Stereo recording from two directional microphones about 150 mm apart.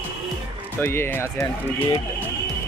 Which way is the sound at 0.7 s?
15° left (ahead or behind).